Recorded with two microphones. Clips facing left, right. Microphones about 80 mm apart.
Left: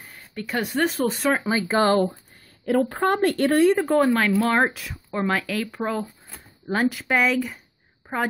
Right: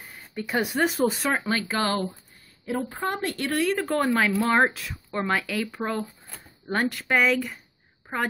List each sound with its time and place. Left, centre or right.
0.1 s speech: centre
1.5 s speech: centre
1.8 s speech: left
2.6 s speech: left
3.7 s a woman's voice: centre
8.0 s a sound: centre